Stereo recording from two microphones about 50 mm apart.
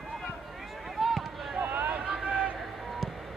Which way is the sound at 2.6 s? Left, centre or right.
Centre.